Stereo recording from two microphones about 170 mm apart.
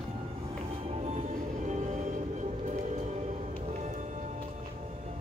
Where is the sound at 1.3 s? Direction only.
45° right (ahead or behind).